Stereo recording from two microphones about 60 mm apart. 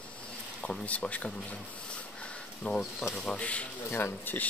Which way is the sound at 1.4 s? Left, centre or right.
Left.